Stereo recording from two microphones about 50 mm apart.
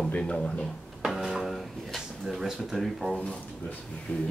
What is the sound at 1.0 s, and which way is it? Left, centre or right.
Music, centre.